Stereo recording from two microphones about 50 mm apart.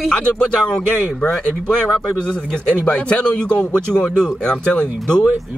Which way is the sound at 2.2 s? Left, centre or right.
Centre.